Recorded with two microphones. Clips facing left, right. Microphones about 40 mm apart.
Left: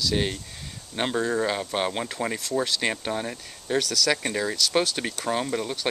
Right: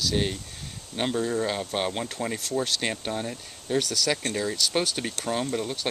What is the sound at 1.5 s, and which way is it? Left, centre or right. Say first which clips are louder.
Speech: left 2 dB; centre.